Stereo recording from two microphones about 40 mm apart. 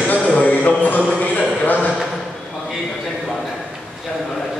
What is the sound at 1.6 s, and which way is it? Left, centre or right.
Speech, left.